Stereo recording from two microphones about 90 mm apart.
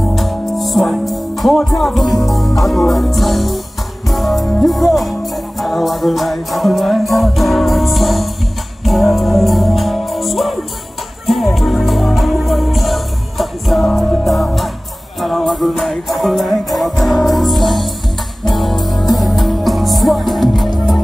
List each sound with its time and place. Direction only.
0.1 s music: centre (ahead or behind)